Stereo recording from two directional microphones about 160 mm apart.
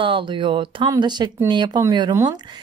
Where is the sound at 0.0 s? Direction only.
30° right (ahead or behind).